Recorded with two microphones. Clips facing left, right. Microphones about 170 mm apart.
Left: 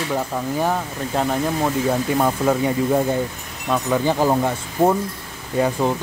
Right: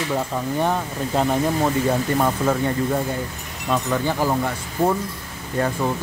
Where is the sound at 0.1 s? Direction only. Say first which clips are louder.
Left 1 dB; 5° left (ahead or behind); by 4.9 s 20° left (ahead or behind).